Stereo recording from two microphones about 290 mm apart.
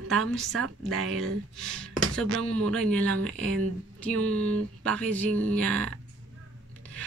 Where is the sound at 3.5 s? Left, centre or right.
Right.